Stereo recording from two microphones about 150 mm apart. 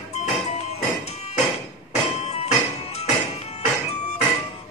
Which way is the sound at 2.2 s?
45° left (ahead or behind).